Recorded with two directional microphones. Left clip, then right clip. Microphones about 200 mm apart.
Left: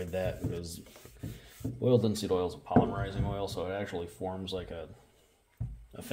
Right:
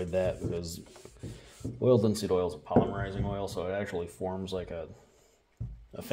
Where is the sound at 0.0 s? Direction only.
35° right (ahead or behind).